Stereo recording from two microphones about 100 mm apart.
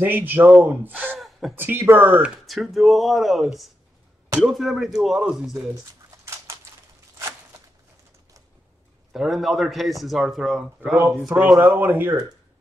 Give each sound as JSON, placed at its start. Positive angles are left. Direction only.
{"t": 0.0, "sound": "a man's voice", "side_deg": -20}
{"t": 2.4, "sound": "a man's voice", "side_deg": 0}
{"t": 6.0, "sound": "a sound", "side_deg": -30}
{"t": 9.1, "sound": "a man's voice", "side_deg": -5}
{"t": 11.3, "sound": "a man's voice", "side_deg": -20}